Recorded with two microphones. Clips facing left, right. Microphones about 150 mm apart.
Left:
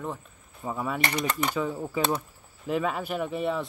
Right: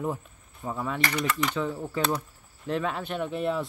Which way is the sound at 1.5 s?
10° left (ahead or behind).